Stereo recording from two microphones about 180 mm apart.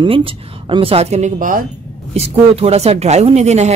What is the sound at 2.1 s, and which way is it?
A man's voice, 35° right (ahead or behind).